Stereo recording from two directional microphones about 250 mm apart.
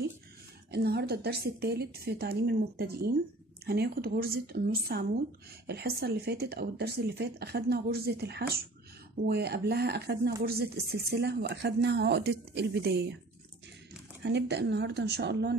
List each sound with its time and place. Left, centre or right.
0.7 s speech: right
14.2 s speech: right